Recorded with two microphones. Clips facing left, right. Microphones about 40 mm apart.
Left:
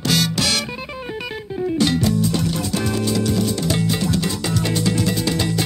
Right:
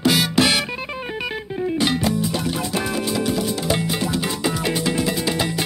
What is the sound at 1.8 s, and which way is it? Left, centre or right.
Music, centre.